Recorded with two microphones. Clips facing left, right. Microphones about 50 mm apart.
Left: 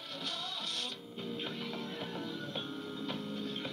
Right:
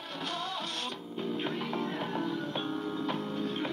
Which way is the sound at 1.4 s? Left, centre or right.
Right.